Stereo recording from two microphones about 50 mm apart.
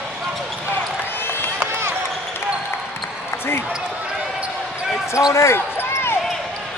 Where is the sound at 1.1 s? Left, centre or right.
Left.